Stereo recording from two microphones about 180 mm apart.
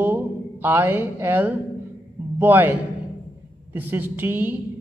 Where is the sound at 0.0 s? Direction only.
10° right (ahead or behind).